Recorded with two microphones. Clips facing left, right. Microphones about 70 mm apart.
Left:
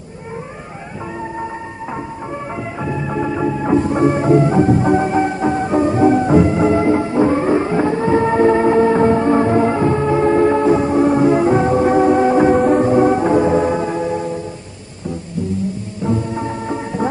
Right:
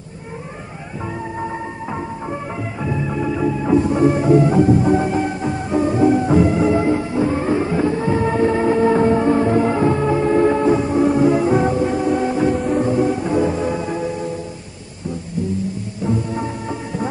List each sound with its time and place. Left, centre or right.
2.8 s music: centre
3.6 s music: left
11.7 s music: left
13.4 s music: left
16.1 s music: left